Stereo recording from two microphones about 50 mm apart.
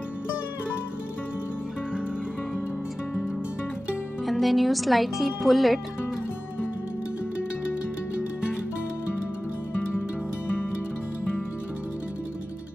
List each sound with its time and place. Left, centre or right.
4.3 s speech: centre